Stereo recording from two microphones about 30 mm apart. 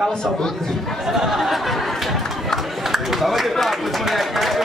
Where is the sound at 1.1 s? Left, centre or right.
Centre.